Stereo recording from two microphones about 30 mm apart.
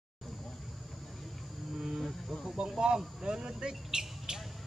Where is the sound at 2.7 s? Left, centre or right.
Right.